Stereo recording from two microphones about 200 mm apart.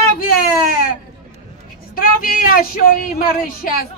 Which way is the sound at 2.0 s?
45° left (ahead or behind).